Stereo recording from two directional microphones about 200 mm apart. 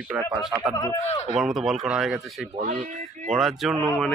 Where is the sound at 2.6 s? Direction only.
35° right (ahead or behind).